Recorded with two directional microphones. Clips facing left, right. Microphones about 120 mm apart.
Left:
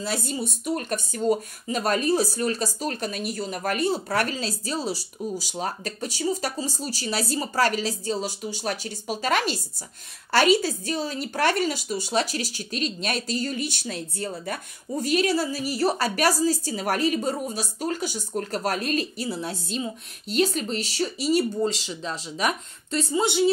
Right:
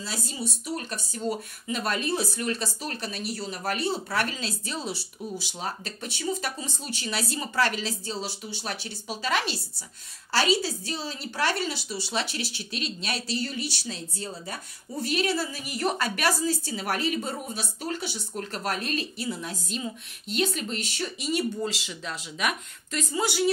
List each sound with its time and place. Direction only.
0.0 s speech: 55° left (ahead or behind); by 23.5 s 25° left (ahead or behind)